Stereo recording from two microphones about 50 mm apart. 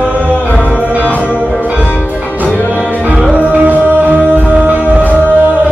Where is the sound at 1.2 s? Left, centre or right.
Right.